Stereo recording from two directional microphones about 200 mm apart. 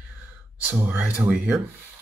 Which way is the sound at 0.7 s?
10° right (ahead or behind).